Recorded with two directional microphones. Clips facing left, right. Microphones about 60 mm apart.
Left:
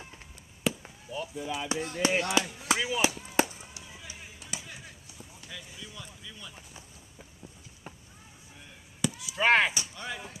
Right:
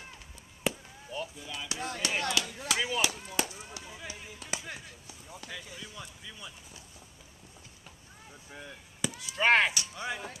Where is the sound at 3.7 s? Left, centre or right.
Right.